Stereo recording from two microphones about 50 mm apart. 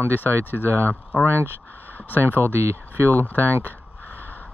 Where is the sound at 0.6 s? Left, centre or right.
Right.